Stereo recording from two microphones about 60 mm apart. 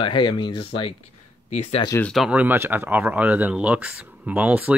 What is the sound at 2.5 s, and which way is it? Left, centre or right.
Speech, right.